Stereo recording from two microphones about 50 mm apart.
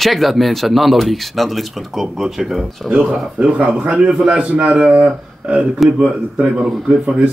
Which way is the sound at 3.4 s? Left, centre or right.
Right.